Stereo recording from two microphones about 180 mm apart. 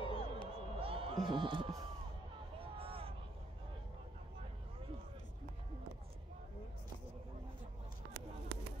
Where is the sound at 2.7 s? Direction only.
30° right (ahead or behind).